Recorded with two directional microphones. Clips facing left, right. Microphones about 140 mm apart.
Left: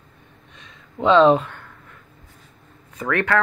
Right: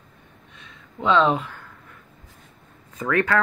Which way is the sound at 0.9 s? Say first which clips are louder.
Left 5 dB; 30° left (ahead or behind).